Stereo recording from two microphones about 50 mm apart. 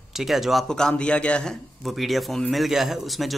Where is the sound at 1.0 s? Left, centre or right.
Left.